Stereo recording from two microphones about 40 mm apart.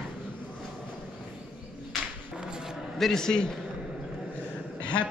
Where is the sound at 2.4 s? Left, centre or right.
Centre.